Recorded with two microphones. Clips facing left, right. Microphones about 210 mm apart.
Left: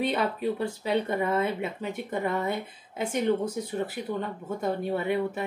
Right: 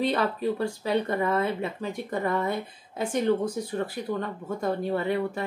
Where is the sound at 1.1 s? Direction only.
20° left (ahead or behind).